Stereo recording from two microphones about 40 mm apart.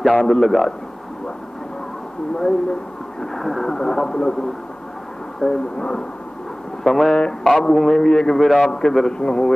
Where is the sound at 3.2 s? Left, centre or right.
Centre.